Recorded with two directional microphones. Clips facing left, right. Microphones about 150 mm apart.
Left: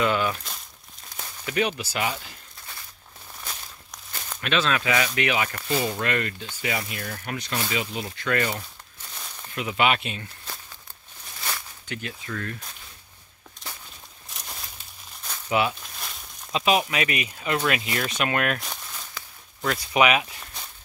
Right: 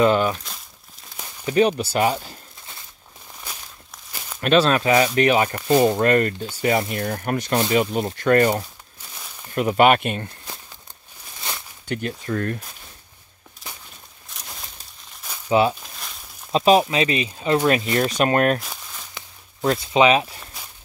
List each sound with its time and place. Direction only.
0.0 s speech: 35° right (ahead or behind)
1.4 s speech: 35° right (ahead or behind)
3.3 s walk: 5° right (ahead or behind)
4.4 s speech: 40° right (ahead or behind)
9.1 s a sound: 5° right (ahead or behind)
9.5 s speech: 45° right (ahead or behind)
11.3 s a sound: 20° right (ahead or behind)
11.9 s speech: 40° right (ahead or behind)
15.2 s crumpling: 10° right (ahead or behind)
16.5 s speech: 35° right (ahead or behind)
18.6 s a sound: centre (ahead or behind)
19.1 s a sound: 25° right (ahead or behind)
20.5 s walk: 5° right (ahead or behind)